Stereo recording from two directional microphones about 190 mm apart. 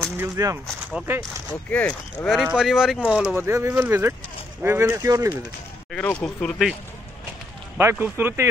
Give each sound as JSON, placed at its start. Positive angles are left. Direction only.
{"t": 0.2, "sound": "speech", "side_deg": -15}
{"t": 1.7, "sound": "speech", "side_deg": 10}
{"t": 5.9, "sound": "speech", "side_deg": 5}
{"t": 7.7, "sound": "speech", "side_deg": -10}